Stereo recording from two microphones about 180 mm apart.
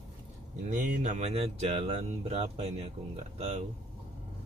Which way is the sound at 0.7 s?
40° right (ahead or behind).